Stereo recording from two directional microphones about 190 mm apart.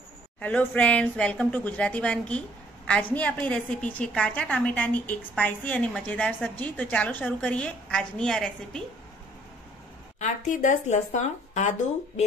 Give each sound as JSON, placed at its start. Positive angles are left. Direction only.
{"t": 0.4, "sound": "a woman's voice", "side_deg": 10}
{"t": 10.1, "sound": "speech", "side_deg": 40}